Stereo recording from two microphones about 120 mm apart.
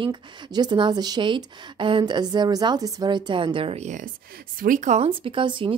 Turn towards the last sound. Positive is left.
turn(degrees=-45)  # may be behind; listen again after turning